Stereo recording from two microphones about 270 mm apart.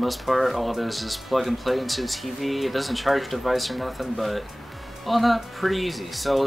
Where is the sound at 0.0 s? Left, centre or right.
Centre.